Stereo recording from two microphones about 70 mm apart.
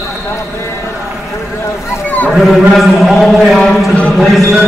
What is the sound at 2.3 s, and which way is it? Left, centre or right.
Speech, centre.